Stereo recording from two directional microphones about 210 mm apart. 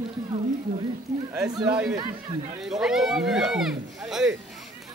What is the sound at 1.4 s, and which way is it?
Speech, 15° right (ahead or behind).